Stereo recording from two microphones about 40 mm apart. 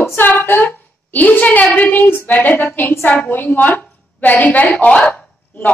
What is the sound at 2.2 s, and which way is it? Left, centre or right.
A woman's voice, left.